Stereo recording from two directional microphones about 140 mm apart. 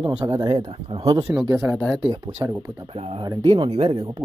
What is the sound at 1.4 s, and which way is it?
Speech, 20° right (ahead or behind).